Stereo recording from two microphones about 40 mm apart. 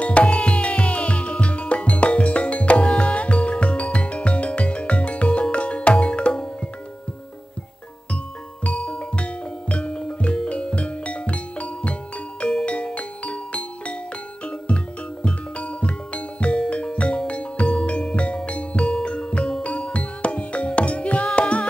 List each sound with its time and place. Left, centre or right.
0.0 s music: left
8.6 s music: left